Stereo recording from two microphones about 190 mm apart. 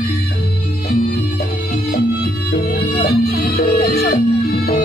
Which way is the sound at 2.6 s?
50° left (ahead or behind).